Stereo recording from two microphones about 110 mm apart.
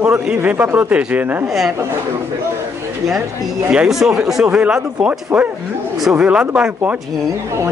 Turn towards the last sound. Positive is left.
turn(degrees=-10)  # may be behind; listen again after turning